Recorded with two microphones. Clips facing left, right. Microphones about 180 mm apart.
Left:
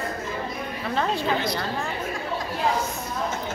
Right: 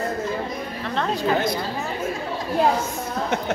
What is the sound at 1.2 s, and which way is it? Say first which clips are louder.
Speech: right 4 dB; 50° right (ahead or behind).